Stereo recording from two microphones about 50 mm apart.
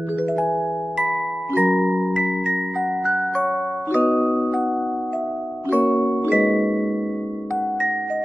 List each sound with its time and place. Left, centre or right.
0.4 s music: right
6.3 s music: right